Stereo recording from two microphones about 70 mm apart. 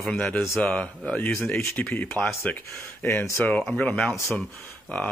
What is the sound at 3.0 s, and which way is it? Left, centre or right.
Speech, left.